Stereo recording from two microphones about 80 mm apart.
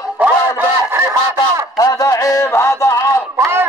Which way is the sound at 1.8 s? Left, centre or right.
Left.